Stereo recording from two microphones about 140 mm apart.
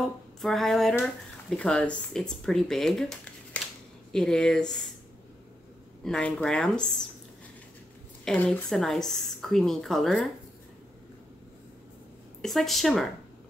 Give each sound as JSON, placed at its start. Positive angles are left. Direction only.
{"t": 0.0, "sound": "a sound", "side_deg": 0}
{"t": 1.6, "sound": "speech", "side_deg": 5}
{"t": 6.0, "sound": "speech", "side_deg": 5}
{"t": 8.3, "sound": "speech", "side_deg": 5}
{"t": 12.4, "sound": "speech", "side_deg": 0}